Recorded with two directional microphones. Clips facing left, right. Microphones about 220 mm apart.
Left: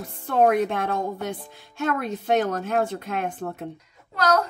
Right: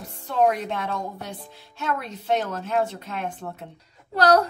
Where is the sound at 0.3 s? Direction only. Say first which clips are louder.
Left 3 dB; 55° left (ahead or behind).